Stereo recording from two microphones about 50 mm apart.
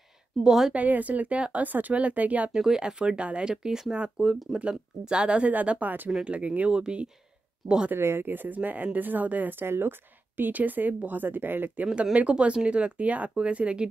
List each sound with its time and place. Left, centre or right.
0.4 s speech: centre
0.7 s speech: right
2.5 s speech: centre
4.3 s speech: centre
4.6 s speech: centre
5.5 s speech: right
6.7 s speech: centre
8.0 s speech: right
8.3 s speech: right
11.8 s speech: right